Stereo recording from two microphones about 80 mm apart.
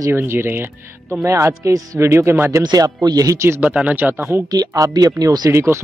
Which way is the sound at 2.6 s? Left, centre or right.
Right.